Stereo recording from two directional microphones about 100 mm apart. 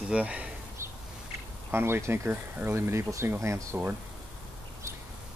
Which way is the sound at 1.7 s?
25° right (ahead or behind).